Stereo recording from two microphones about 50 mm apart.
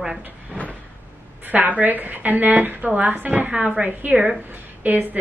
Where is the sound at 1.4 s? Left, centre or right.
Right.